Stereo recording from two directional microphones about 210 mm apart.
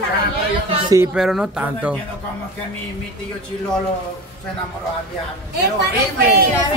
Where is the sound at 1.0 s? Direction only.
5° right (ahead or behind).